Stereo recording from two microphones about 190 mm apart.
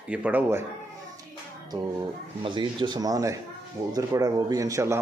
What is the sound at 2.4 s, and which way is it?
A man's voice, 25° right (ahead or behind).